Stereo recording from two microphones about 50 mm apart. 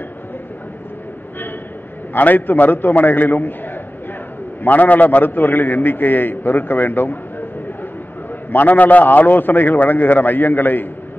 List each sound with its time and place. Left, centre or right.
2.1 s a man's voice: left
4.6 s a man's voice: left
8.5 s a man's voice: left